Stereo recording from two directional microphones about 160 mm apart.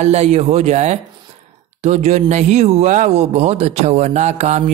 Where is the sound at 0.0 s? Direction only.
45° right (ahead or behind).